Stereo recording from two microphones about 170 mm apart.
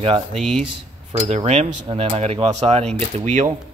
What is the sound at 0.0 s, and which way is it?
Speech, 35° right (ahead or behind).